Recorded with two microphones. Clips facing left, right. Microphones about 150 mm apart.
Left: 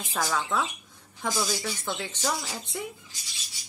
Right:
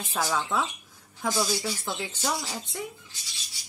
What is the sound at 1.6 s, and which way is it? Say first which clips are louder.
Speech: right 1 dB; 10° right (ahead or behind).